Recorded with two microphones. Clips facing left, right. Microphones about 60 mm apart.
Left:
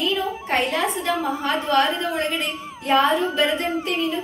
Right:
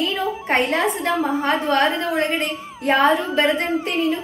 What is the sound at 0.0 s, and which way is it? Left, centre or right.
A woman's voice, right.